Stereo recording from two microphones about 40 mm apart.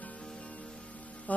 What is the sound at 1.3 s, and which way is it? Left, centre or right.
Music, left.